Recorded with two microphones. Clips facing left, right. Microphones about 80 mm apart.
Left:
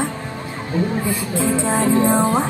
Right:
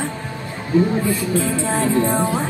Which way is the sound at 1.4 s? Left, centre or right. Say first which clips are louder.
Left 2 dB; centre.